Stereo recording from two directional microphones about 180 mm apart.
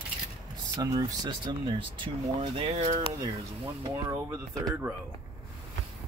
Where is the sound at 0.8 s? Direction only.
25° right (ahead or behind).